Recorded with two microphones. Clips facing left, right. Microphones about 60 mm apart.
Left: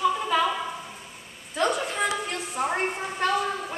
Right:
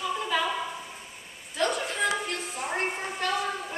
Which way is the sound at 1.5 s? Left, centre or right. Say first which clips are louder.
Left 3 dB; centre.